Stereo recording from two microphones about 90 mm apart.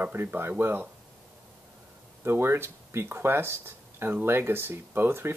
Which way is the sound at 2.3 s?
25° right (ahead or behind).